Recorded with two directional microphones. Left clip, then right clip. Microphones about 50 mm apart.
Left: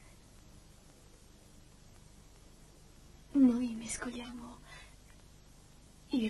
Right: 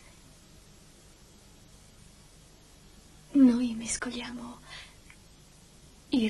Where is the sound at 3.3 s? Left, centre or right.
Left.